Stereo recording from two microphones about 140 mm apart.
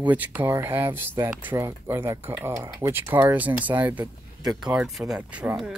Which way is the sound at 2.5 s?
25° right (ahead or behind).